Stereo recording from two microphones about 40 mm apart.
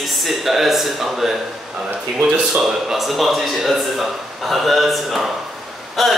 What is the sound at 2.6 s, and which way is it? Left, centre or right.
Speech, centre.